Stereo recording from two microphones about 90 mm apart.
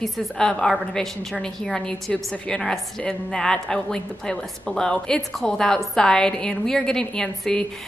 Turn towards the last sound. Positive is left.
turn(degrees=5)  # may be behind; listen again after turning